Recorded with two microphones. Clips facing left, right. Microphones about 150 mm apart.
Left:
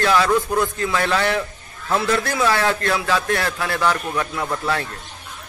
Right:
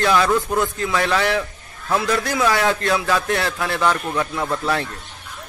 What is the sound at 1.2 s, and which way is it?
A man's voice, 5° right (ahead or behind).